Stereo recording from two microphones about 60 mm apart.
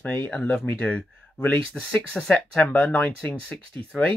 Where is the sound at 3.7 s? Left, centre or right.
Left.